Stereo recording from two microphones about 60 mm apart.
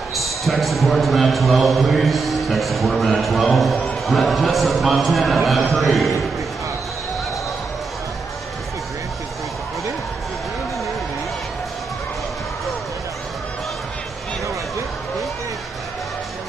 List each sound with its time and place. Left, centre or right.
0.1 s a man's voice: centre